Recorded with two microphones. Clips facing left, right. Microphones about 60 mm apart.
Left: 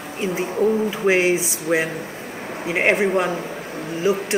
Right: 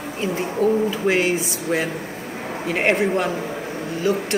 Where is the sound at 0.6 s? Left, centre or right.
Left.